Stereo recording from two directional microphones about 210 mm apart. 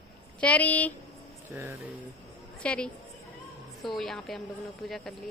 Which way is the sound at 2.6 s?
5° left (ahead or behind).